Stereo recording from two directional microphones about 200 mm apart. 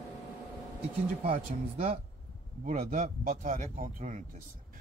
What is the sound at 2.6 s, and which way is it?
Speech, 40° right (ahead or behind).